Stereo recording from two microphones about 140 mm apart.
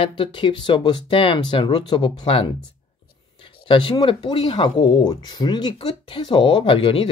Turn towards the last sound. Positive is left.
turn(degrees=40)  # may be behind; listen again after turning